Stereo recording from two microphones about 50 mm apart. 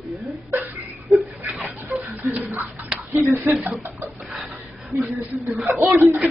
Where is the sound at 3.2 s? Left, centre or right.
Right.